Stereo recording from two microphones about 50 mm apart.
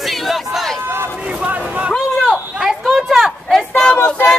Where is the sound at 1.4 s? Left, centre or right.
Right.